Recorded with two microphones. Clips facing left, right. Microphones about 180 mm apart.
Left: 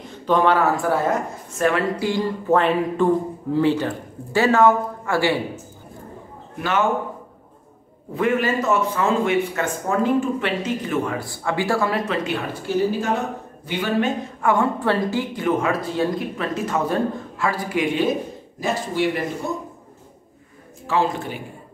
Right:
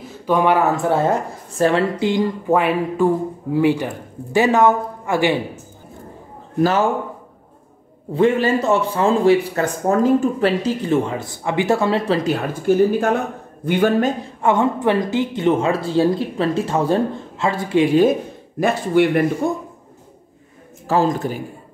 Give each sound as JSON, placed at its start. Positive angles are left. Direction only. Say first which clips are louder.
{"t": 0.0, "sound": "a woman's voice", "louder": "right 1 dB", "side_deg": -10}
{"t": 6.6, "sound": "a man's voice", "louder": "right 5 dB", "side_deg": -35}
{"t": 8.1, "sound": "a man's voice", "louder": "right 5 dB", "side_deg": -30}
{"t": 14.4, "sound": "a woman's voice", "louder": "right 3 dB", "side_deg": -20}
{"t": 18.6, "sound": "a man's voice", "louder": "right 7 dB", "side_deg": -55}
{"t": 20.8, "sound": "a man's voice", "louder": "right 4 dB", "side_deg": -40}